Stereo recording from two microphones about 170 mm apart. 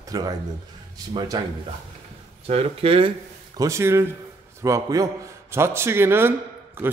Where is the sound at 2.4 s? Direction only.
35° right (ahead or behind).